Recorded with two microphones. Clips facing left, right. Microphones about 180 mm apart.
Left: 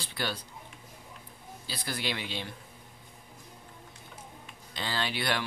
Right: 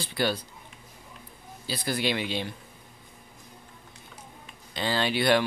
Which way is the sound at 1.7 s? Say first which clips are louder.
Right 7 dB; 15° right (ahead or behind).